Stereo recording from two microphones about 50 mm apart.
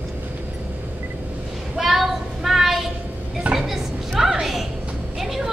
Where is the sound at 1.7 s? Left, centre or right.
Centre.